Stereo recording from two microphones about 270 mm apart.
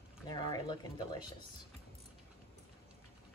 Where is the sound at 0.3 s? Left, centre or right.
Centre.